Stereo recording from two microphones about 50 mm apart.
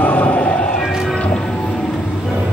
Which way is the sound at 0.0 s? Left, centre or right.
Left.